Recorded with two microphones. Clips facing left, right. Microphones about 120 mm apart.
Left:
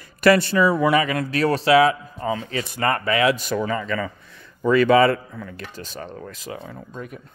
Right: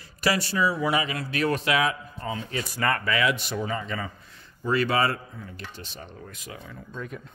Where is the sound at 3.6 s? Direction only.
90° left.